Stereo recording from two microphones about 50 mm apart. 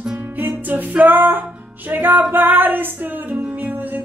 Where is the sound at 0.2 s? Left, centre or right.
Right.